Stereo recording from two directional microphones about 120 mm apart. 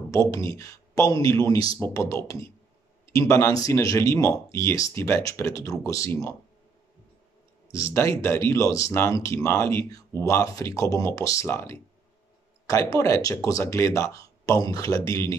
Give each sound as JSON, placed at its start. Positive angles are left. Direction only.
{"t": 0.1, "sound": "speech", "side_deg": 25}
{"t": 7.7, "sound": "speech", "side_deg": 25}